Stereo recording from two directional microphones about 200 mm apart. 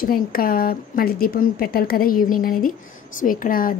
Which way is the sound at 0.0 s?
45° left (ahead or behind).